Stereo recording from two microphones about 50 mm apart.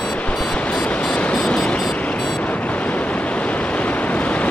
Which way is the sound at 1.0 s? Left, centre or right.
Left.